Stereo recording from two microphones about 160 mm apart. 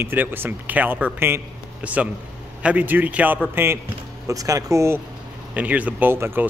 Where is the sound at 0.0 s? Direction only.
15° right (ahead or behind).